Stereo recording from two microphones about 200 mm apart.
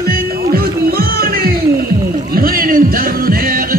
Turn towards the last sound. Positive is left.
turn(degrees=-45)  # may be behind; listen again after turning